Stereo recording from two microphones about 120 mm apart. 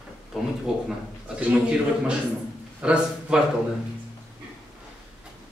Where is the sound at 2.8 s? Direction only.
10° right (ahead or behind).